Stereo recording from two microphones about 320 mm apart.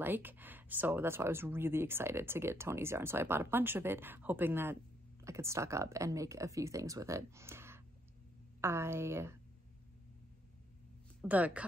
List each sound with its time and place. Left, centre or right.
0.0 s speech: centre
11.1 s a woman's voice: centre